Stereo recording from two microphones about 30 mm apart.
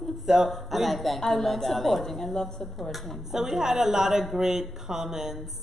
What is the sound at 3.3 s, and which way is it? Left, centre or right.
A woman's voice, centre.